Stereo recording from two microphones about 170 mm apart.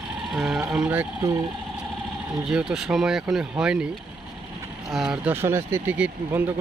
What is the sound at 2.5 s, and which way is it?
Speech, 5° right (ahead or behind).